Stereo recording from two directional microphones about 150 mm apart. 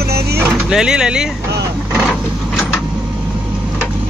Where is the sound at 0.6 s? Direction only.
5° right (ahead or behind).